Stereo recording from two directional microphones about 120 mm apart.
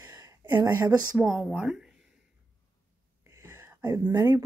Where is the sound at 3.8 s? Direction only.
25° right (ahead or behind).